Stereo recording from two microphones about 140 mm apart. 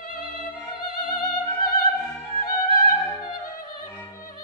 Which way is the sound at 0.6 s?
30° left (ahead or behind).